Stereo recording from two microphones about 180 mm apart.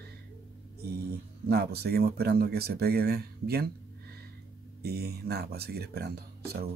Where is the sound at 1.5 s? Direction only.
60° right (ahead or behind).